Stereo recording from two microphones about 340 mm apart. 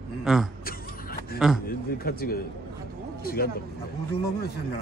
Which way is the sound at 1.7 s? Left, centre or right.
Left.